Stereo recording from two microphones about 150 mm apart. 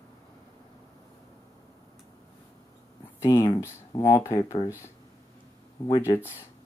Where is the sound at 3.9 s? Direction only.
25° left (ahead or behind).